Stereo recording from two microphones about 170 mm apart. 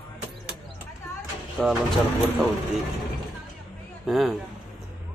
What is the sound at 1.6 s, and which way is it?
Speech, 5° left (ahead or behind).